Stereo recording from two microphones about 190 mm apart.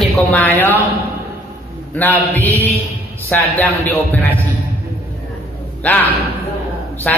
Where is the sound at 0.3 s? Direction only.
10° left (ahead or behind).